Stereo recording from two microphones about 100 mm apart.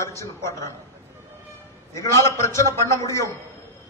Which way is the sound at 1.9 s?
30° left (ahead or behind).